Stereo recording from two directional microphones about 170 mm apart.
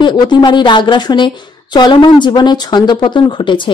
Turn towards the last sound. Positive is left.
turn(degrees=30)  # may be behind; listen again after turning